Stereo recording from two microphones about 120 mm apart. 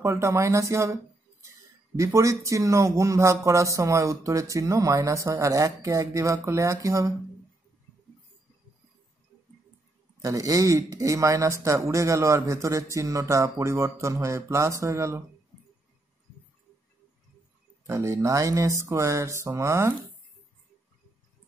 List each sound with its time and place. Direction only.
0.0 s speech: 25° right (ahead or behind)
2.0 s speech: 25° right (ahead or behind)
10.2 s speech: 25° right (ahead or behind)
17.8 s speech: 25° right (ahead or behind)